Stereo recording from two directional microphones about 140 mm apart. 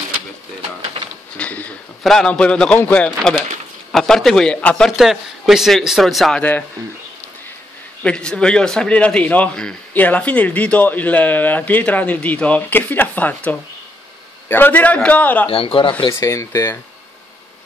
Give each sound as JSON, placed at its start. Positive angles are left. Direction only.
{"t": 1.3, "sound": "a man's voice", "side_deg": 10}
{"t": 8.0, "sound": "a man's voice", "side_deg": 5}
{"t": 15.4, "sound": "speech", "side_deg": 40}
{"t": 16.1, "sound": "speech", "side_deg": 20}